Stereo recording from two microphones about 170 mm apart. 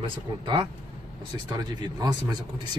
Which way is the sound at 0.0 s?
30° right (ahead or behind).